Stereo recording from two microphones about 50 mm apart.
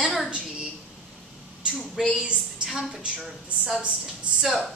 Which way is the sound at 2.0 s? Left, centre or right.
Centre.